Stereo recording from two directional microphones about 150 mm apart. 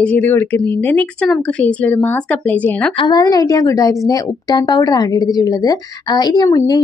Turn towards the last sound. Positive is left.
turn(degrees=25)  # may be behind; listen again after turning